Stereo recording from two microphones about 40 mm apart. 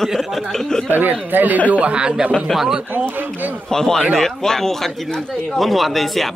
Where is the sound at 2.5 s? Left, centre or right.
Centre.